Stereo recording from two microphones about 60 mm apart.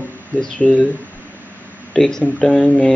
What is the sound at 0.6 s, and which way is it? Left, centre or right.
Speech, centre.